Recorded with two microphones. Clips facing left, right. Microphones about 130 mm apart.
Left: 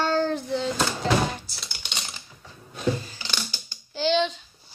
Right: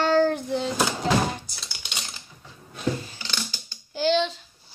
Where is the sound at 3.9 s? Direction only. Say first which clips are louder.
Right 1 dB; 5° right (ahead or behind).